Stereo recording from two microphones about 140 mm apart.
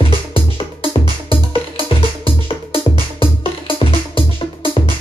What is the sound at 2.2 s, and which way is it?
Music, 40° left (ahead or behind).